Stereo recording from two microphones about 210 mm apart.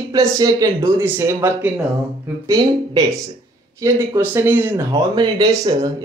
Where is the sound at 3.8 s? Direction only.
10° right (ahead or behind).